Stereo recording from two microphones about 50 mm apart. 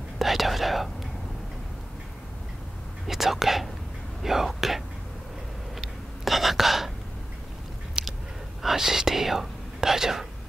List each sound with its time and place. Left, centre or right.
0.2 s whispering: centre
3.1 s speech: centre
5.8 s whispering: centre
8.0 s a sound: centre
8.6 s speech: centre